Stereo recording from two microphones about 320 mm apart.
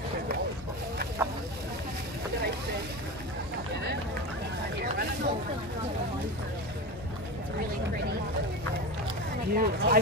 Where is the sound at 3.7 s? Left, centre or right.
Right.